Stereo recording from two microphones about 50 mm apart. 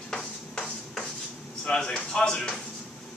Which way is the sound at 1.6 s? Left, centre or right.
Centre.